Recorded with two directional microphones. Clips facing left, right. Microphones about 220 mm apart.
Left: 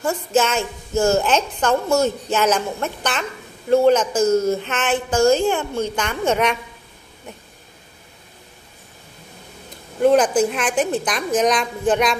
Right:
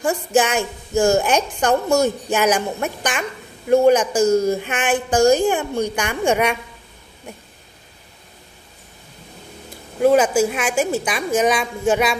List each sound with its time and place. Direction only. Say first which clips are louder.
0.0 s a woman's voice: right 1 dB; 15° right (ahead or behind)
9.9 s a woman's voice: even; 5° right (ahead or behind)